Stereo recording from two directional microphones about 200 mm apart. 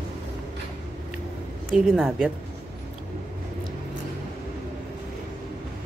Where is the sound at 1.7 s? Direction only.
5° right (ahead or behind).